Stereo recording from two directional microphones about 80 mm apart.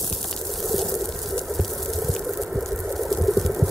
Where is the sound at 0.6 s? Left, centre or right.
Centre.